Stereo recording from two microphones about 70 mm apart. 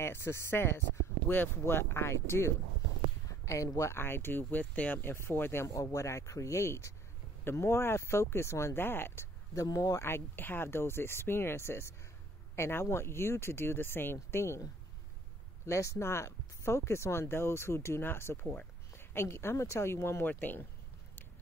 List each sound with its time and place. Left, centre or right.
0.0 s speech: left
3.3 s speech: left
3.9 s speech: left
5.0 s speech: left
5.7 s speech: left
9.5 s speech: left
9.9 s speech: left
15.6 s speech: left
18.4 s speech: centre
18.9 s speech: left